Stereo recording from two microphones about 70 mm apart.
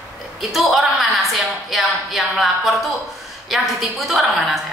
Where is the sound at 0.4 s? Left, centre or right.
Centre.